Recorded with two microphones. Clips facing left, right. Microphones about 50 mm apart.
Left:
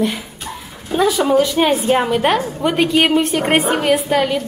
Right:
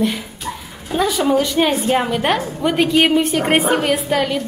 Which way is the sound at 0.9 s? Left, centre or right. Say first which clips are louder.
Left 2 dB; centre.